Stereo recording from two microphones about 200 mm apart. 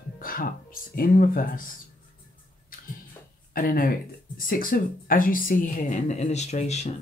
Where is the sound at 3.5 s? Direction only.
45° left (ahead or behind).